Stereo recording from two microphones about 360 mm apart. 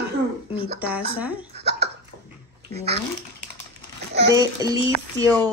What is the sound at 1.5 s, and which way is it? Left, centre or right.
Hiccup, right.